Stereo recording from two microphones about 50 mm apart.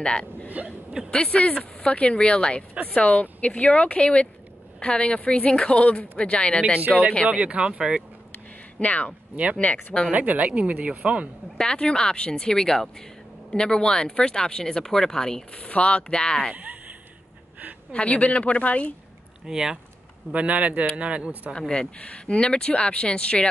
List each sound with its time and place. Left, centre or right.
0.0 s speech: centre
0.5 s hiccup: right
1.1 s speech: left
7.2 s speech: right
8.7 s speech: left
10.1 s speech: right
11.5 s speech: centre
15.5 s speech: left
17.9 s speech: left
19.4 s speech: centre
20.3 s speech: right
21.5 s speech: centre